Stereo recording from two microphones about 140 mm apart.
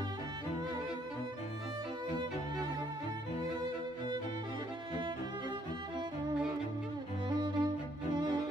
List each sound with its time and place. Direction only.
7.2 s music: 30° right (ahead or behind)